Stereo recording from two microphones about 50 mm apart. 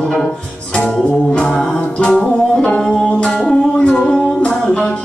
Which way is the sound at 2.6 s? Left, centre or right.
Centre.